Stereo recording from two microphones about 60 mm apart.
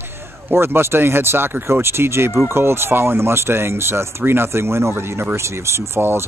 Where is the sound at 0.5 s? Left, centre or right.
Right.